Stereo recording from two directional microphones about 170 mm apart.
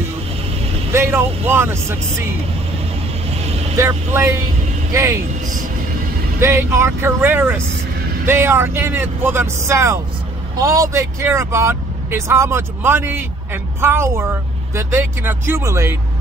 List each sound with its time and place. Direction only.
0.9 s speech: 15° right (ahead or behind)
3.3 s vehicle: 40° right (ahead or behind)
3.7 s speech: 15° right (ahead or behind)
6.4 s speech: 15° right (ahead or behind)